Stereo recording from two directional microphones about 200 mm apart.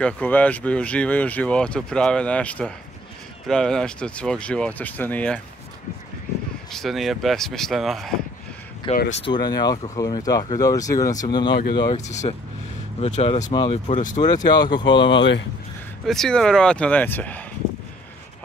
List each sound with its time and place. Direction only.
0.0 s speech: 10° left (ahead or behind)
6.7 s speech: centre (ahead or behind)
8.9 s speech: 30° left (ahead or behind)
12.0 s speech: 35° left (ahead or behind)
13.8 s speech: 40° left (ahead or behind)
14.2 s speech: 20° left (ahead or behind)
16.1 s speech: centre (ahead or behind)